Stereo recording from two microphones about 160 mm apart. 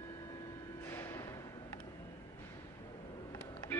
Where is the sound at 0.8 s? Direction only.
15° left (ahead or behind).